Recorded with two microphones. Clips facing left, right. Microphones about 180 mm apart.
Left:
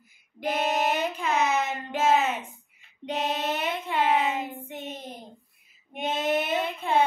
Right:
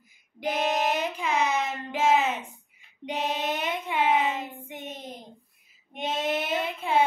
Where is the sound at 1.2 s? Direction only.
10° right (ahead or behind).